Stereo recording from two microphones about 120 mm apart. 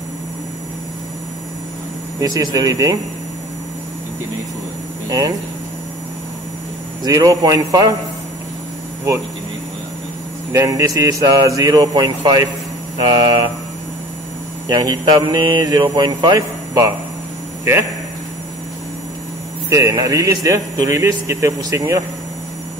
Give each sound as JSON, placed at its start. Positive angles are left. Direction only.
{"t": 2.1, "sound": "speech", "side_deg": -30}
{"t": 7.0, "sound": "speech", "side_deg": -30}
{"t": 10.5, "sound": "speech", "side_deg": -30}
{"t": 14.7, "sound": "speech", "side_deg": -35}
{"t": 19.7, "sound": "speech", "side_deg": -30}